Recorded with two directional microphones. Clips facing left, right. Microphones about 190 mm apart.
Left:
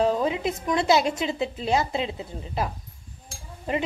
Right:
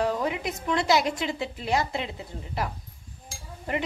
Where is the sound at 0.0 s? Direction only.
20° left (ahead or behind).